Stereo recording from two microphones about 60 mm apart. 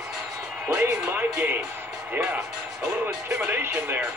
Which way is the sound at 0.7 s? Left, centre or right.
Right.